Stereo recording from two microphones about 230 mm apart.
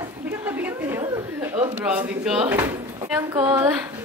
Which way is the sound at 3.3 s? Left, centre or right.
Centre.